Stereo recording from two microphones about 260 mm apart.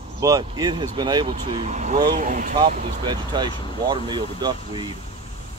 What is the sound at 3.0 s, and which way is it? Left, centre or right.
Speech, centre.